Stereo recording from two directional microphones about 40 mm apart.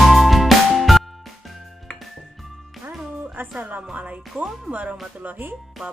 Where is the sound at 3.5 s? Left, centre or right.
Right.